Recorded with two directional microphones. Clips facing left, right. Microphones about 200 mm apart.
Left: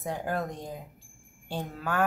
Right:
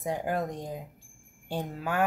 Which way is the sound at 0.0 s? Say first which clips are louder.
Right 2 dB; 15° right (ahead or behind).